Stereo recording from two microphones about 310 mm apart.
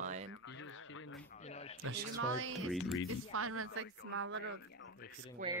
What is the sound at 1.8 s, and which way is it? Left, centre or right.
Speech, right.